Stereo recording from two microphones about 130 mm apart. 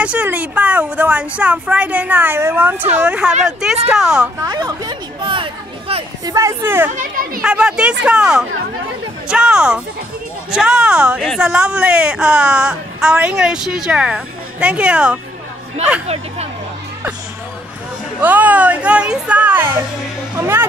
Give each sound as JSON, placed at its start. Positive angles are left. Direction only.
{"t": 0.0, "sound": "a woman's voice", "side_deg": -10}
{"t": 4.5, "sound": "a sound", "side_deg": -35}
{"t": 6.2, "sound": "speech", "side_deg": -25}
{"t": 6.9, "sound": "a child's voice", "side_deg": -85}
{"t": 7.4, "sound": "speech", "side_deg": -5}
{"t": 18.2, "sound": "speech", "side_deg": -10}